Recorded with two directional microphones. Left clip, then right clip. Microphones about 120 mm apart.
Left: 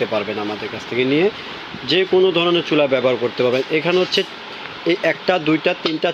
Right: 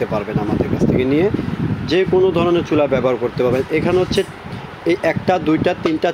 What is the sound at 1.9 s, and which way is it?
Speech, 10° right (ahead or behind).